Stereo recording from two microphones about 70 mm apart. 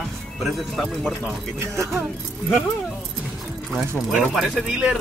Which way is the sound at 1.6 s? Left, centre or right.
Right.